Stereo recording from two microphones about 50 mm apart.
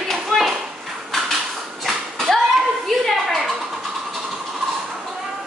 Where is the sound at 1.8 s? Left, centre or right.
Centre.